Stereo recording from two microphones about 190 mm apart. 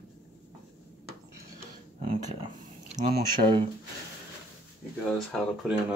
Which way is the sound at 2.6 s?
40° right (ahead or behind).